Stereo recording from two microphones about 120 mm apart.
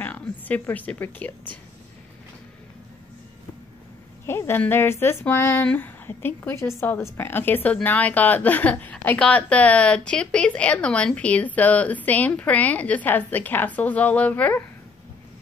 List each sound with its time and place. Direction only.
0.0 s speech: 15° left (ahead or behind)
4.3 s a woman's voice: 20° left (ahead or behind)